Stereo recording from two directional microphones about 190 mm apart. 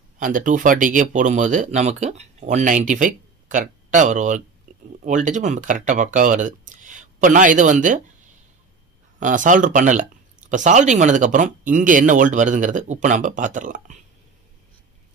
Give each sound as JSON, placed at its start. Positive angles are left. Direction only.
{"t": 0.2, "sound": "speech", "side_deg": -45}
{"t": 9.2, "sound": "speech", "side_deg": -40}